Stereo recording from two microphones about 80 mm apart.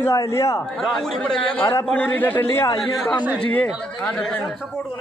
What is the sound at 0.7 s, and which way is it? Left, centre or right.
Speech, centre.